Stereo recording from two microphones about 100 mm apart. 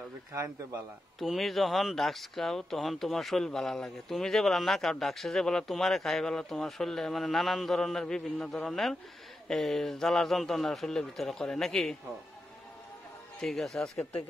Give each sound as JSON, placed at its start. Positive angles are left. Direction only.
{"t": 0.3, "sound": "a man's voice", "side_deg": -30}
{"t": 1.2, "sound": "speech", "side_deg": 0}
{"t": 13.4, "sound": "speech", "side_deg": 5}